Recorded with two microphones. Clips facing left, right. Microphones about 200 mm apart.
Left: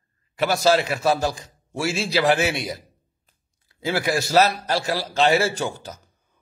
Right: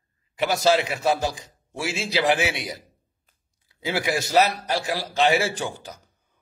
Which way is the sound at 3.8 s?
20° right (ahead or behind).